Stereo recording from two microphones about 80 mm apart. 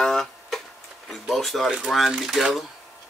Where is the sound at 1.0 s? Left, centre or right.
Centre.